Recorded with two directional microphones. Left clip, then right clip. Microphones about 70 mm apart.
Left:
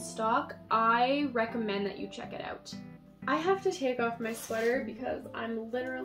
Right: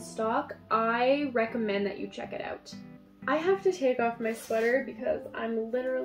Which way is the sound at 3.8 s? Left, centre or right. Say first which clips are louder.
Right 4 dB; left.